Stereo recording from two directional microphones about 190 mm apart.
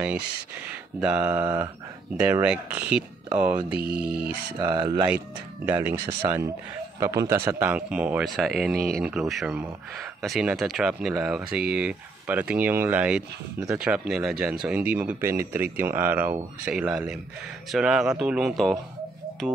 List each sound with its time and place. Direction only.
1.0 s speech: 5° right (ahead or behind)
3.8 s speech: 55° right (ahead or behind)
4.6 s speech: 20° right (ahead or behind)
5.7 s speech: 10° right (ahead or behind)